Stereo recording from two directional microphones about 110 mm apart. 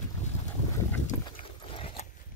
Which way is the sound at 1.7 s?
55° left (ahead or behind).